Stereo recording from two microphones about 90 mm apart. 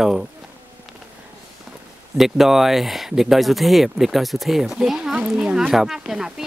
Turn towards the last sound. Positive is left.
turn(degrees=-5)  # may be behind; listen again after turning